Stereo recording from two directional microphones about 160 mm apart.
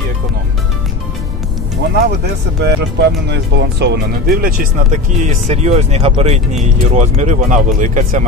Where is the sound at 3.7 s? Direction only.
90° right.